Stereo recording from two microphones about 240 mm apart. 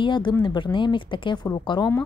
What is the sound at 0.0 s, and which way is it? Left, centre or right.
A woman's voice, centre.